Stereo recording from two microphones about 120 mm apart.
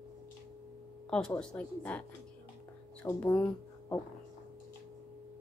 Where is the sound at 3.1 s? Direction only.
20° left (ahead or behind).